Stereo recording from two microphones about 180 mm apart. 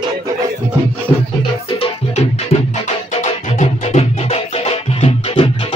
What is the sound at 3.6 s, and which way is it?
Music, 35° left (ahead or behind).